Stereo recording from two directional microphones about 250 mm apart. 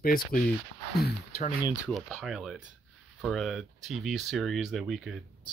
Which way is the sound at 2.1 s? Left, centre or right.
Centre.